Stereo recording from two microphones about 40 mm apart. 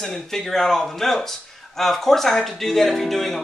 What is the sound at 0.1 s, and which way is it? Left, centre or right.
Speech, centre.